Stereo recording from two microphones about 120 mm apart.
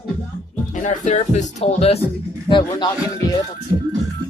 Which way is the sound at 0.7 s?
90° left.